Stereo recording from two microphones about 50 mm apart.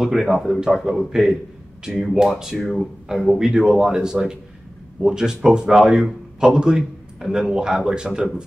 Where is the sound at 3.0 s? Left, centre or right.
Centre.